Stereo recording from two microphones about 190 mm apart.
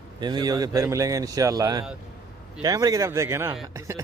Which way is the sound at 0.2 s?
20° right (ahead or behind).